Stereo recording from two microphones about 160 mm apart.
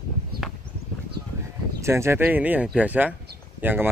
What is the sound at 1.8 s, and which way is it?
Speech, 15° right (ahead or behind).